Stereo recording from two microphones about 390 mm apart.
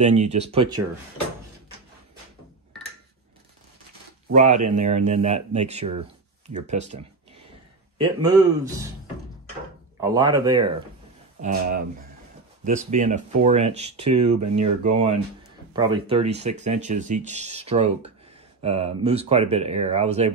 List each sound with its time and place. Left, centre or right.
0.0 s speech: centre
4.3 s speech: centre
8.0 s speech: centre
9.9 s speech: centre
11.4 s speech: right
14.1 s speech: right
15.7 s speech: centre